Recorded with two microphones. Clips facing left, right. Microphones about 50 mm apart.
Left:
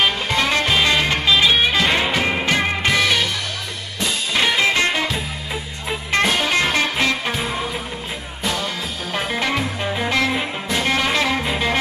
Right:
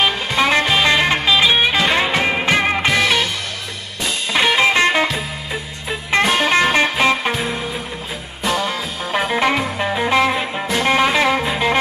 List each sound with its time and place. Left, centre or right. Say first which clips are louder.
0.4 s music: right 4 dB; centre
2.1 s music: right 2 dB; centre
3.0 s music: right 2 dB; centre
4.6 s music: right 4 dB; right
6.3 s music: right 4 dB; right
8.5 s music: right 4 dB; centre
10.3 s music: right 2 dB; centre
10.9 s music: right 5 dB; centre